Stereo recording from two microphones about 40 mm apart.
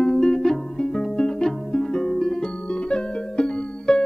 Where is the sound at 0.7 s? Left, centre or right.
Left.